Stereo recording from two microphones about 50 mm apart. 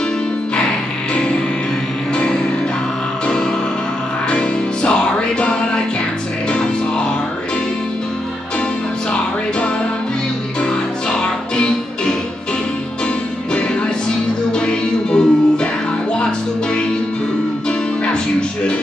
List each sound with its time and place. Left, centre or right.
4.3 s music: left
10.6 s music: centre
14.5 s music: centre
17.6 s music: centre